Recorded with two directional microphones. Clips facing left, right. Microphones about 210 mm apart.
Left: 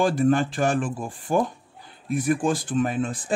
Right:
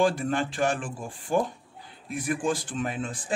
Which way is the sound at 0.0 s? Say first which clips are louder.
Left 4 dB; 40° left (ahead or behind).